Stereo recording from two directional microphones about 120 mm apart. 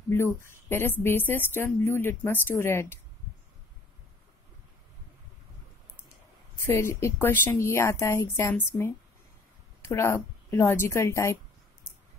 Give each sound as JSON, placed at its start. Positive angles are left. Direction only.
{"t": 0.4, "sound": "speech", "side_deg": 20}
{"t": 6.6, "sound": "a woman's voice", "side_deg": 20}